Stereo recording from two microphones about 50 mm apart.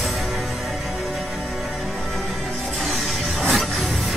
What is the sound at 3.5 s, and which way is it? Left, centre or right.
Music, centre.